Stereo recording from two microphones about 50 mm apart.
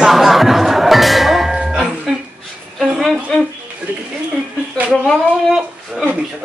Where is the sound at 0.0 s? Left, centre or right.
Centre.